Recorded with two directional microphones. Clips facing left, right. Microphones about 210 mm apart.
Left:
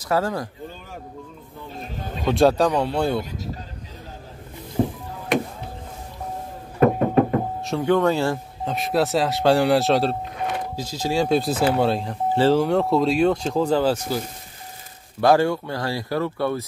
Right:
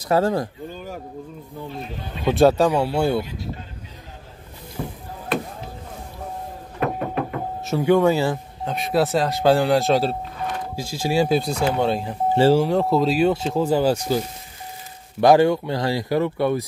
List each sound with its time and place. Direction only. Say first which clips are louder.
0.1 s speech: right 4 dB; 25° right (ahead or behind)
1.8 s speech: even; 45° left (ahead or behind)
2.2 s speech: right 2 dB; centre (ahead or behind)
4.8 s music: left 8 dB; 30° left (ahead or behind)
6.8 s knock: left 7 dB; 40° left (ahead or behind)
7.6 s speech: right 4 dB; 5° right (ahead or behind)